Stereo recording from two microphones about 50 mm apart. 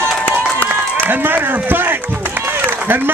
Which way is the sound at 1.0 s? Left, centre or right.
Right.